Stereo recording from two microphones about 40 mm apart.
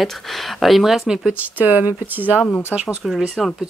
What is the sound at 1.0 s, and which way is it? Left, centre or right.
Speech, centre.